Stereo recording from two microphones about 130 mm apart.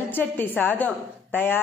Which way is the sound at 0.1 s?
15° left (ahead or behind).